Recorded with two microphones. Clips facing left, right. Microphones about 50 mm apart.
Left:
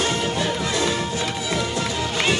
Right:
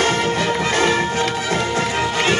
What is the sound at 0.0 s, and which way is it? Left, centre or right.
Music, right.